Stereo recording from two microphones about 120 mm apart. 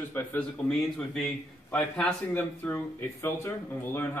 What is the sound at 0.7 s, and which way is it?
A man's voice, 5° left (ahead or behind).